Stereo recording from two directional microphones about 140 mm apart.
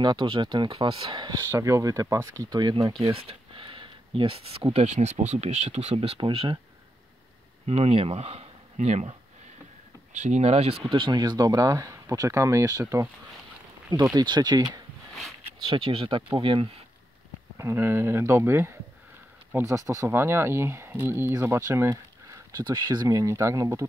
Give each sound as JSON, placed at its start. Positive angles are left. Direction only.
{"t": 0.0, "sound": "speech", "side_deg": -35}
{"t": 1.4, "sound": "speech", "side_deg": -20}
{"t": 3.0, "sound": "a sound", "side_deg": -45}
{"t": 4.7, "sound": "speech", "side_deg": -55}
{"t": 7.6, "sound": "speech", "side_deg": -45}
{"t": 10.1, "sound": "speech", "side_deg": -55}
{"t": 10.9, "sound": "speech", "side_deg": -35}
{"t": 14.1, "sound": "speech", "side_deg": -30}
{"t": 17.6, "sound": "speech", "side_deg": -15}